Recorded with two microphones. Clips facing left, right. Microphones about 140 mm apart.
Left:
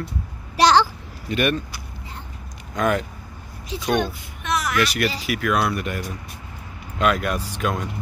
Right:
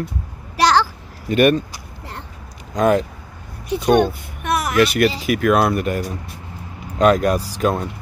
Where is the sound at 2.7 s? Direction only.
30° right (ahead or behind).